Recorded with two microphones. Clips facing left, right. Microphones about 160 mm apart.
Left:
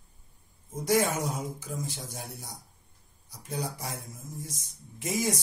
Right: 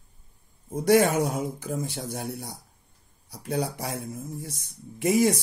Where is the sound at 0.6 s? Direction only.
65° right (ahead or behind).